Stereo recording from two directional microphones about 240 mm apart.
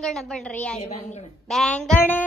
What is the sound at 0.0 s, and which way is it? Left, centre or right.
Speech, centre.